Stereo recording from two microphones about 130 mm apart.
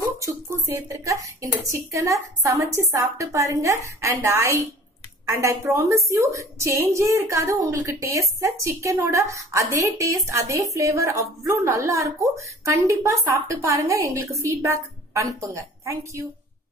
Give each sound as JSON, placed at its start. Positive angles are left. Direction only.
{"t": 0.2, "sound": "a woman's voice", "side_deg": -20}